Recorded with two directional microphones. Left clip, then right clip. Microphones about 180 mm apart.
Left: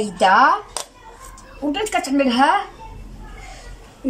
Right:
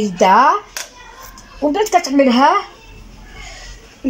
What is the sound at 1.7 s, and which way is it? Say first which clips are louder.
Speech: right 5 dB; 40° right (ahead or behind).